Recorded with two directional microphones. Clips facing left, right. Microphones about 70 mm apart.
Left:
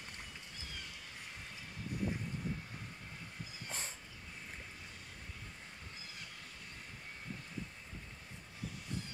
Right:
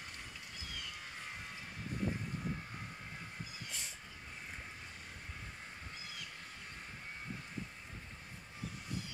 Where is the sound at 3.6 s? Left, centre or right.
Left.